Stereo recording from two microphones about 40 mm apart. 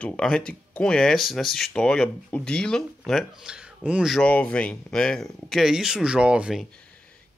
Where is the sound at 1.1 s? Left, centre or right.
Centre.